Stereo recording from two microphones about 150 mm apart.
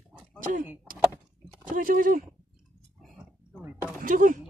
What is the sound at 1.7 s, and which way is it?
Speech, 65° right (ahead or behind).